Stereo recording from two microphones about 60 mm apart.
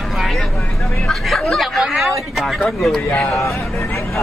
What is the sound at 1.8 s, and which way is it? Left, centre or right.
Music, centre.